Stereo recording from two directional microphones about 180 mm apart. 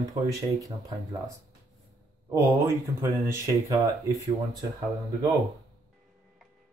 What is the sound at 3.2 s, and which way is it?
Speech, 15° right (ahead or behind).